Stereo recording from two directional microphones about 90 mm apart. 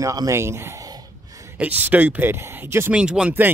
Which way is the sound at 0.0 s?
45° right (ahead or behind).